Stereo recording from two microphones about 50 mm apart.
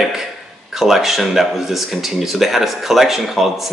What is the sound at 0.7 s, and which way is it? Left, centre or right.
Speech, centre.